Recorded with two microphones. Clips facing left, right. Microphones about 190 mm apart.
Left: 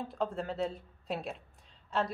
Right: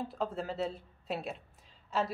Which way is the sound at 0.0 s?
Centre (ahead or behind).